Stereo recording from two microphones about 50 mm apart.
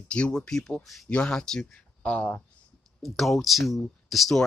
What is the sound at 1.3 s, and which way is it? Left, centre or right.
Speech, centre.